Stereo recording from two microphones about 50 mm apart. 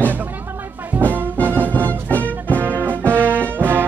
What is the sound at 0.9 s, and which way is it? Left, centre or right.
Music, right.